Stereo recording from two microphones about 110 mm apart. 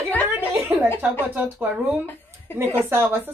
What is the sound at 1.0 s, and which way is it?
A woman's voice, 15° right (ahead or behind).